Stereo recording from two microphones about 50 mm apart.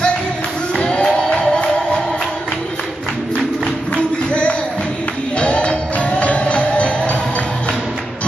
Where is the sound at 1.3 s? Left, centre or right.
Centre.